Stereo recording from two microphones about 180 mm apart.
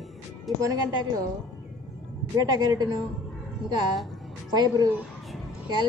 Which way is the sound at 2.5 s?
20° right (ahead or behind).